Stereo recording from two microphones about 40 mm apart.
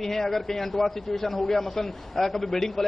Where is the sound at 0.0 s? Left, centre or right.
Centre.